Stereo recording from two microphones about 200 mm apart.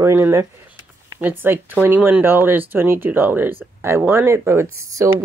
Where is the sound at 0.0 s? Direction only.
15° right (ahead or behind).